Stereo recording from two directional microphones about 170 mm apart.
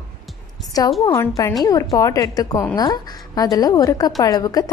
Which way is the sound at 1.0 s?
20° left (ahead or behind).